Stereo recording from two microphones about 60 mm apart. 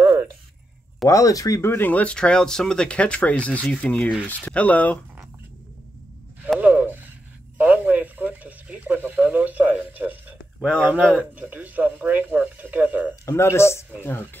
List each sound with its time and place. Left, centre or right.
1.0 s speech: left
1.6 s speech: left
1.9 s speech: left
2.1 s speech: centre
6.6 s a sound: right
10.7 s a man's voice: right
13.1 s speech: left